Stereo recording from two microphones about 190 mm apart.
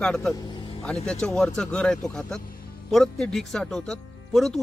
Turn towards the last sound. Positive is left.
turn(degrees=0)  # may be behind; listen again after turning